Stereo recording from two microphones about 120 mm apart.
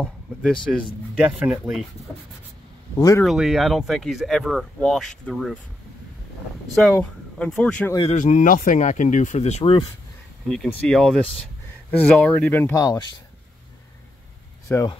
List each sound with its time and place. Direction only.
0.0 s speech: 5° left (ahead or behind)
3.3 s speech: 5° right (ahead or behind)
6.9 s speech: 10° left (ahead or behind)
8.0 s speech: 80° left
10.5 s speech: 5° left (ahead or behind)
12.7 s speech: 30° left (ahead or behind)
14.7 s speech: 20° left (ahead or behind)